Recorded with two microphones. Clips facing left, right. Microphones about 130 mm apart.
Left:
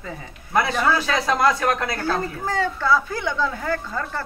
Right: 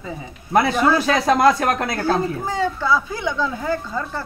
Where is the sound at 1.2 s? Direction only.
45° right (ahead or behind).